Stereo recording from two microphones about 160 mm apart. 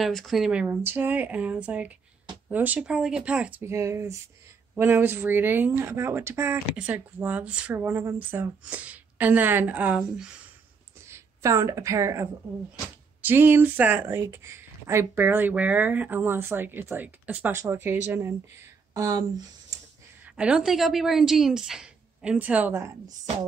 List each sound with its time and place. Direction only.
0.0 s speech: centre (ahead or behind)
11.1 s speech: 15° right (ahead or behind)
20.2 s a woman's voice: 5° right (ahead or behind)